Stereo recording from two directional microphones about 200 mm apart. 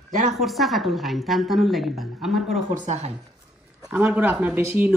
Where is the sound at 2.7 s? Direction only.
35° right (ahead or behind).